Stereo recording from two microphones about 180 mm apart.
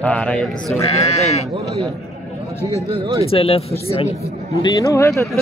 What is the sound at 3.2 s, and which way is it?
Speech, 30° left (ahead or behind).